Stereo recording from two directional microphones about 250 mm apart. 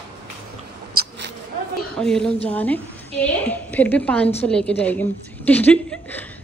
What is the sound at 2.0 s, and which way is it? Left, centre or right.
A woman's voice, centre.